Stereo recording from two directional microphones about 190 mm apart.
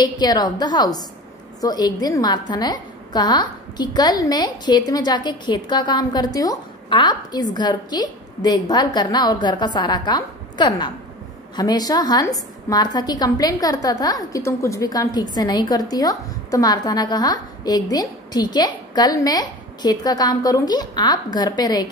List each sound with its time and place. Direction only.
0.0 s a woman's voice: 20° left (ahead or behind)